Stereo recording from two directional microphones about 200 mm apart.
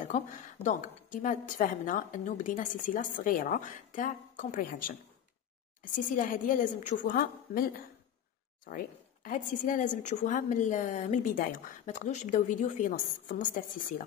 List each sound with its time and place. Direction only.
0.7 s speech: 40° left (ahead or behind)